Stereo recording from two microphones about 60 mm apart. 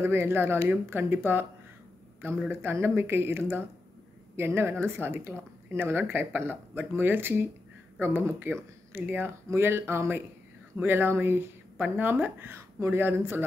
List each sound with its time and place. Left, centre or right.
0.3 s speech: right
2.5 s speech: right
9.5 s speech: right